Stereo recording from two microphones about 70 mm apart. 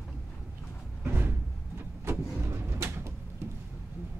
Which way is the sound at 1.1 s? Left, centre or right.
Right.